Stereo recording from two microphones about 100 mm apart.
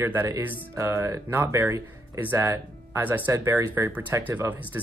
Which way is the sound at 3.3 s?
30° right (ahead or behind).